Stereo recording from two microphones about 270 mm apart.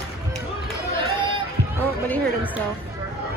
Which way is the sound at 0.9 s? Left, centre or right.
Centre.